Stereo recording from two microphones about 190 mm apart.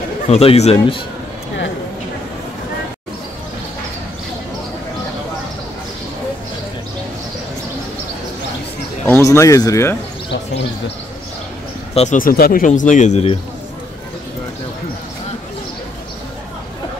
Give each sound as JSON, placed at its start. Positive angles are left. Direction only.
{"t": 0.3, "sound": "speech", "side_deg": 30}
{"t": 9.0, "sound": "speech", "side_deg": 10}
{"t": 11.9, "sound": "speech", "side_deg": 30}
{"t": 12.2, "sound": "speech", "side_deg": 50}